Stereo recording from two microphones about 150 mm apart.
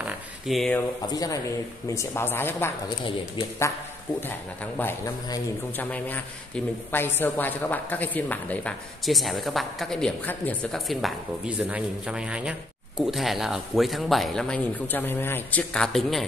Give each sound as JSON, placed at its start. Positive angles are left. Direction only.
{"t": 0.0, "sound": "a sound", "side_deg": 0}
{"t": 1.1, "sound": "a man's voice", "side_deg": 25}
{"t": 4.3, "sound": "a man's voice", "side_deg": 15}